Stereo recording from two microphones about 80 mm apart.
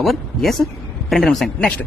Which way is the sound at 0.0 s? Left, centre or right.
Centre.